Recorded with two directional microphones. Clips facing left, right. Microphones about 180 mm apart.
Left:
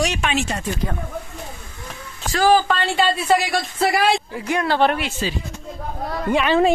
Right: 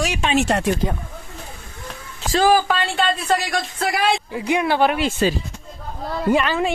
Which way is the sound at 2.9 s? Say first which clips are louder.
Left 4 dB; 5° left (ahead or behind).